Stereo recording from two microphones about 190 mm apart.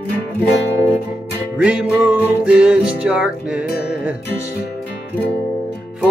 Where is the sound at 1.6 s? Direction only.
5° right (ahead or behind).